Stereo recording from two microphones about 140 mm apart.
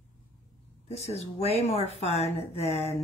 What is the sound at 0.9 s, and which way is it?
A woman's voice, 50° left (ahead or behind).